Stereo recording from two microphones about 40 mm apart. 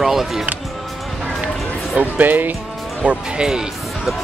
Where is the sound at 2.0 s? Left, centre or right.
Right.